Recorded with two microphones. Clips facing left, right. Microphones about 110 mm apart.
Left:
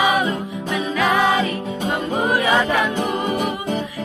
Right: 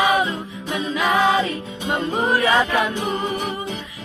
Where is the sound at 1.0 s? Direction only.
20° right (ahead or behind).